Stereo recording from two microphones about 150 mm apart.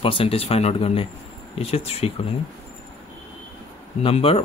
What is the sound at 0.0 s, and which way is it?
Speech, 35° left (ahead or behind).